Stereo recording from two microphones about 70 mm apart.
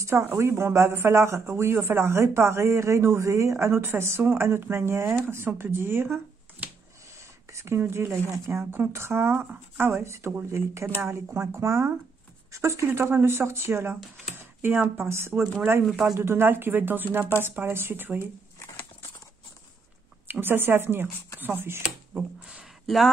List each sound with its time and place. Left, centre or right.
0.0 s speech: right
7.2 s a sound: right
7.8 s speech: right
20.2 s speech: right
22.1 s a sound: centre
22.8 s speech: centre